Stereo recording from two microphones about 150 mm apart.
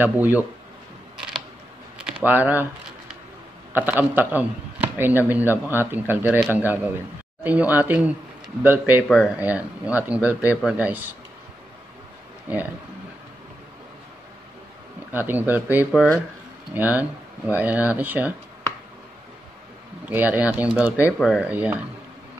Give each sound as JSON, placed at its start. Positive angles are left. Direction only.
{"t": 0.0, "sound": "a man's voice", "side_deg": -10}
{"t": 2.2, "sound": "a man's voice", "side_deg": -10}
{"t": 3.7, "sound": "a man's voice", "side_deg": -10}
{"t": 12.5, "sound": "a man's voice", "side_deg": -10}
{"t": 15.1, "sound": "a man's voice", "side_deg": -15}
{"t": 20.1, "sound": "a man's voice", "side_deg": -10}